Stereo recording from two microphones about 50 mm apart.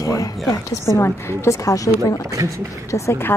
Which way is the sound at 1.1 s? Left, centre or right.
Left.